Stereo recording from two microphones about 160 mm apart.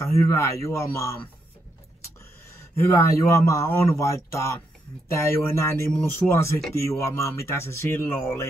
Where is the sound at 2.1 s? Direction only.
20° left (ahead or behind).